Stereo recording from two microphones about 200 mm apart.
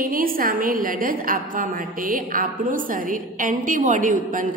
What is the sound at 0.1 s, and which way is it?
A woman's voice, 45° right (ahead or behind).